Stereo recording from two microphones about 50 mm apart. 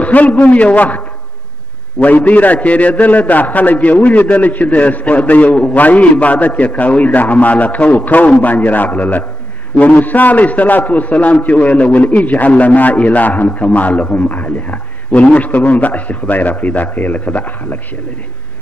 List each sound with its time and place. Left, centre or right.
0.0 s a man's voice: left